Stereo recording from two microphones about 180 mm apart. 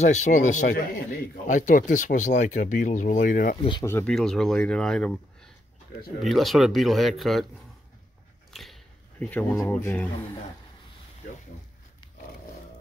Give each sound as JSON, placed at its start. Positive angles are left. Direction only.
{"t": 0.0, "sound": "speech", "side_deg": 40}
{"t": 3.8, "sound": "speech", "side_deg": 15}
{"t": 4.1, "sound": "speech", "side_deg": 5}
{"t": 8.5, "sound": "biting", "side_deg": 0}
{"t": 9.2, "sound": "speech", "side_deg": 10}